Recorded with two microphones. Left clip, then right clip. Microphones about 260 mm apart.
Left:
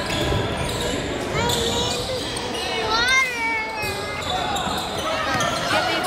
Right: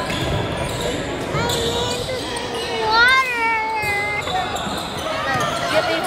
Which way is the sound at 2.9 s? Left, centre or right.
Right.